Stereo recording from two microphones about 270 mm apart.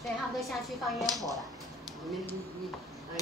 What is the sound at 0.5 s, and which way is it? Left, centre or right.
Speech, centre.